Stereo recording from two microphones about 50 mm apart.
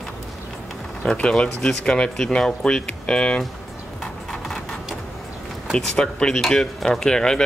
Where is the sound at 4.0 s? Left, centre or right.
Centre.